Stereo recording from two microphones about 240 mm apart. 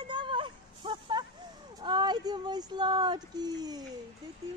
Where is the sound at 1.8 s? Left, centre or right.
Centre.